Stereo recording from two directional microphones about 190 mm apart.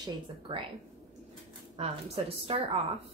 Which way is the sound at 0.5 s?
30° right (ahead or behind).